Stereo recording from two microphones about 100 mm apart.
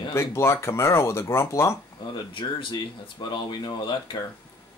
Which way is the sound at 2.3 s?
55° left (ahead or behind).